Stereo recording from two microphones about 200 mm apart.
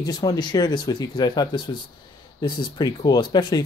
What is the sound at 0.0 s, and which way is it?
Speech, 20° left (ahead or behind).